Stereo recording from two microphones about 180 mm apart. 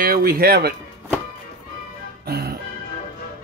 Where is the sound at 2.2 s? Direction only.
60° right (ahead or behind).